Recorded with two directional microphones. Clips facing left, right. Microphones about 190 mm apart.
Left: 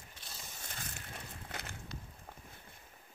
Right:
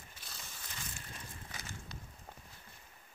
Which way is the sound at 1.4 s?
60° left (ahead or behind).